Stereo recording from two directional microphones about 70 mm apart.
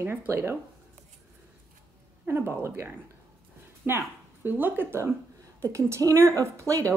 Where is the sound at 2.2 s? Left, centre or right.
Right.